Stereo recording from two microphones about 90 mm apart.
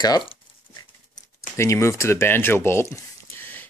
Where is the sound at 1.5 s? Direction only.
30° left (ahead or behind).